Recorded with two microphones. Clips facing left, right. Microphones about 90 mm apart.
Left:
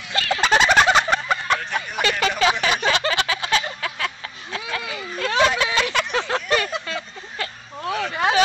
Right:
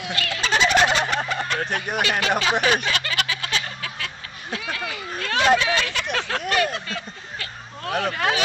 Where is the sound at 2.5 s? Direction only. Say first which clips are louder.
Right 3 dB; 45° right (ahead or behind).